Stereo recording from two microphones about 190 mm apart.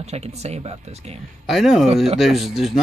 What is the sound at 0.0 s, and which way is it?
Speech, 35° right (ahead or behind).